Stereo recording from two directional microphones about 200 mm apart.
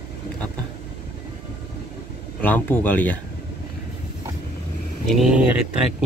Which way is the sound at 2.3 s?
10° left (ahead or behind).